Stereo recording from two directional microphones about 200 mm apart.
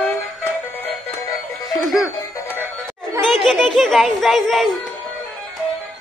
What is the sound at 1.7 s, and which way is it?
Music, centre (ahead or behind).